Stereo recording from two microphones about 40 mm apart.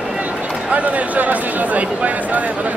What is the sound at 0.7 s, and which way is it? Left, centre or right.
Speech, right.